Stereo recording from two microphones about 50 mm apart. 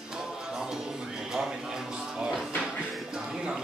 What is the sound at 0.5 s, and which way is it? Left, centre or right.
Music, centre.